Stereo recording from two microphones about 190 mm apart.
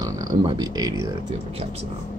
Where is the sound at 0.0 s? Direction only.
20° right (ahead or behind).